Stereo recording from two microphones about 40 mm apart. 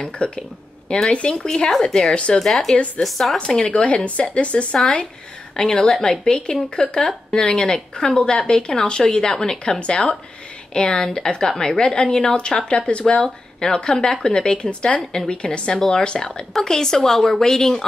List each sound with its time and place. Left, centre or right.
0.2 s a woman's voice: left; by 3.3 s centre
3.3 s speech: left
9.8 s speech: left
11.5 s speech: centre
11.8 s speech: left; by 17.8 s centre